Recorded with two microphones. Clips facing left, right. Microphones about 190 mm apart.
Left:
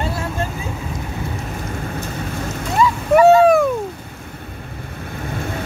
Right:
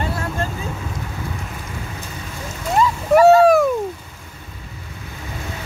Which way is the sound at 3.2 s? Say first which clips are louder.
Even; centre (ahead or behind).